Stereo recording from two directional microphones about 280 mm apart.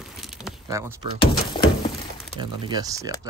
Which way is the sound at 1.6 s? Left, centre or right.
Centre.